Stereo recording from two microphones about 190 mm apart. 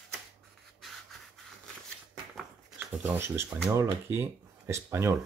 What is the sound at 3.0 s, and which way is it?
Speech, 10° right (ahead or behind).